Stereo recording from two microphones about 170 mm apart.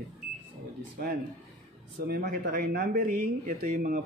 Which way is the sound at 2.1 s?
60° right (ahead or behind).